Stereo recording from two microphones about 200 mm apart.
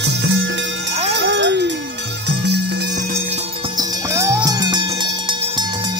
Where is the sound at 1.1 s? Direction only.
60° right (ahead or behind).